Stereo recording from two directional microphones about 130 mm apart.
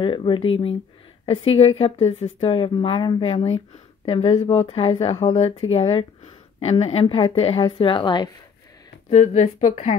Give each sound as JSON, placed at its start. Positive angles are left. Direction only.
{"t": 0.0, "sound": "a woman's voice", "side_deg": 40}
{"t": 9.1, "sound": "a woman's voice", "side_deg": 60}